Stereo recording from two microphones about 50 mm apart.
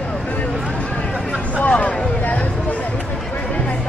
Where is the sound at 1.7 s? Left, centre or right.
Left.